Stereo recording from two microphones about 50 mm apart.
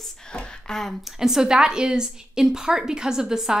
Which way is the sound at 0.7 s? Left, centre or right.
Centre.